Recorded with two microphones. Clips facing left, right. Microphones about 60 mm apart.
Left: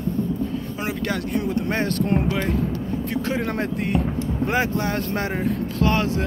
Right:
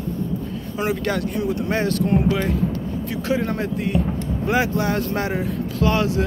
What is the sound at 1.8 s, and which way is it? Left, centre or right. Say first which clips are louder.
Speech: right 2 dB; left.